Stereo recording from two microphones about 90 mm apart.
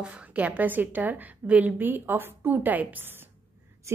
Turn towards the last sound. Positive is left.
turn(degrees=-20)  # may be behind; listen again after turning